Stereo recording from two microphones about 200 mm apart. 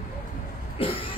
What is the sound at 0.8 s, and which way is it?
Cough, 25° left (ahead or behind).